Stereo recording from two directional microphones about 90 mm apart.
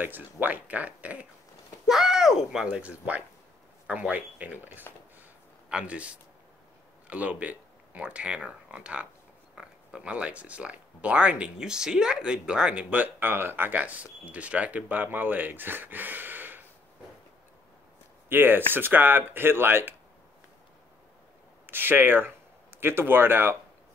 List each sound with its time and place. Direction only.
0.0 s speech: 20° right (ahead or behind)
1.9 s speech: 5° right (ahead or behind); by 16.6 s 20° right (ahead or behind)
18.3 s speech: 25° right (ahead or behind)
21.6 s speech: 25° right (ahead or behind)